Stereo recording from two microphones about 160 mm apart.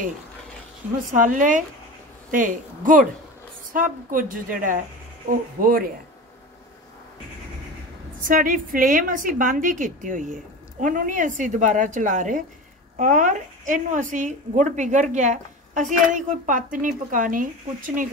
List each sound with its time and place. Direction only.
1.1 s a woman's voice: 55° right (ahead or behind)
8.2 s a woman's voice: 60° right (ahead or behind)